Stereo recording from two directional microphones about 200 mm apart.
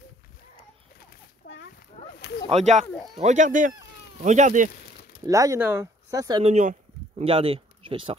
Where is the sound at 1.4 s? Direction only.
55° left (ahead or behind).